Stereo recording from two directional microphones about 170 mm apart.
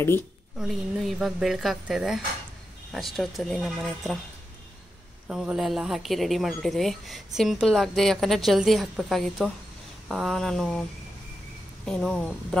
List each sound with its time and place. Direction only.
0.6 s speech: centre (ahead or behind)
5.3 s speech: 5° right (ahead or behind)
11.8 s speech: 5° left (ahead or behind)